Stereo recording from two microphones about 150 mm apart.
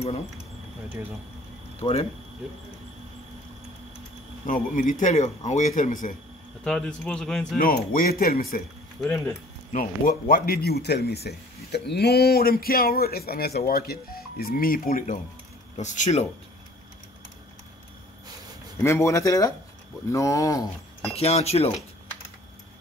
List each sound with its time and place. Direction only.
1.8 s speech: 40° left (ahead or behind)
4.5 s a man's voice: 55° left (ahead or behind)
6.6 s a man's voice: 5° left (ahead or behind)
7.5 s speech: 70° left (ahead or behind)
9.7 s speech: 60° left (ahead or behind)
15.7 s a man's voice: 55° left (ahead or behind)
18.8 s speech: 20° left (ahead or behind)
21.2 s a man's voice: 45° left (ahead or behind)